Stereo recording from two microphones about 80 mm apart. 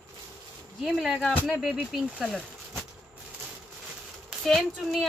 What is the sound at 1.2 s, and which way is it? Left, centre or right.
Speech, centre.